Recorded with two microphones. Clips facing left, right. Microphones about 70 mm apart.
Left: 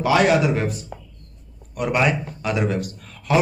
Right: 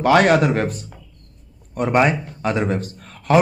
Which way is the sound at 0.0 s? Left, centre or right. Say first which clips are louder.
Right 3 dB; right.